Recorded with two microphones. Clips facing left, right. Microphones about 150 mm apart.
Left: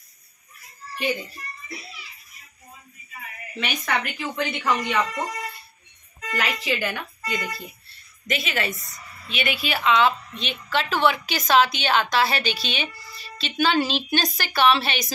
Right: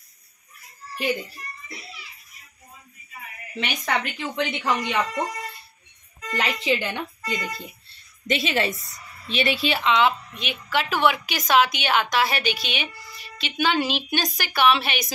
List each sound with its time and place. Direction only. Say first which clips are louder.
3.5 s a child's voice: even; 20° right (ahead or behind)
6.3 s a child's voice: right 2 dB; 25° right (ahead or behind)